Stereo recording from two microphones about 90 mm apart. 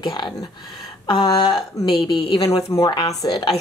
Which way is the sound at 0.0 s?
60° left (ahead or behind).